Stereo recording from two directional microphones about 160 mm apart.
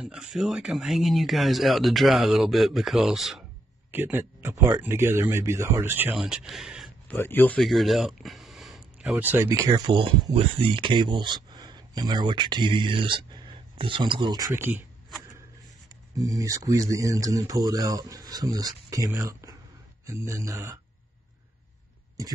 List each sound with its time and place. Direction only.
0.0 s speech: 5° right (ahead or behind)
3.9 s speech: 15° right (ahead or behind)
6.1 s speech: 5° right (ahead or behind)
7.1 s speech: 15° left (ahead or behind); by 9.8 s 20° right (ahead or behind)
10.3 s speech: 35° right (ahead or behind)
14.5 s speech: 15° right (ahead or behind)
16.3 s speech: 20° right (ahead or behind)